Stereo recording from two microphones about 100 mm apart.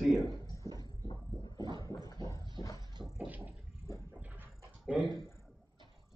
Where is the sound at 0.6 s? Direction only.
40° right (ahead or behind).